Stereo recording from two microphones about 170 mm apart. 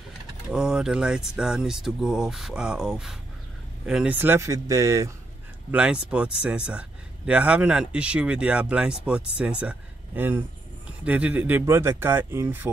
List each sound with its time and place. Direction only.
0.5 s speech: 5° right (ahead or behind)
5.7 s speech: 5° right (ahead or behind)